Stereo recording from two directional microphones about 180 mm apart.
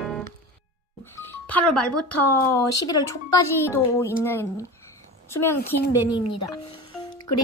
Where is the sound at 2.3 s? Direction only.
15° left (ahead or behind).